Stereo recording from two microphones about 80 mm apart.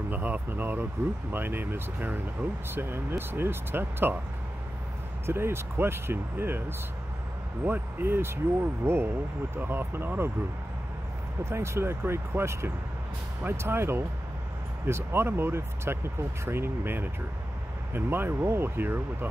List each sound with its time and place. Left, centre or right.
0.1 s speech: right
5.2 s speech: right
7.6 s speech: right
11.4 s speech: right